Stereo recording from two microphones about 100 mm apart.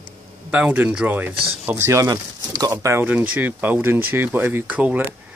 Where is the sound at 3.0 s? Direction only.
20° right (ahead or behind).